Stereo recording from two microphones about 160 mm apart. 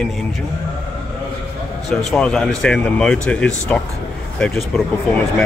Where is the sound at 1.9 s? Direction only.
Centre (ahead or behind).